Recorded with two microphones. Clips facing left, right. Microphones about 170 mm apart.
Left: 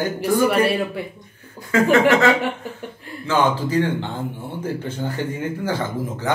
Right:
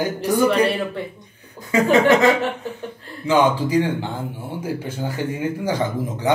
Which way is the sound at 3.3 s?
15° right (ahead or behind).